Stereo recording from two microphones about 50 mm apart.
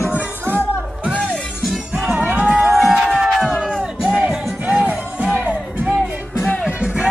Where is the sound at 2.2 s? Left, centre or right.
Right.